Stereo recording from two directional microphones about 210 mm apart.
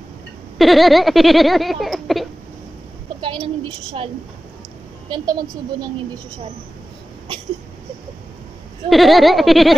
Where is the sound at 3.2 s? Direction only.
20° right (ahead or behind).